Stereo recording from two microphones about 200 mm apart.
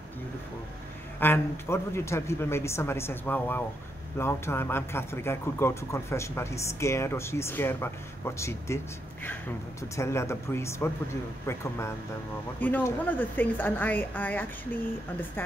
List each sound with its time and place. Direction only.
1.2 s speech: 10° left (ahead or behind)
12.5 s speech: 10° left (ahead or behind)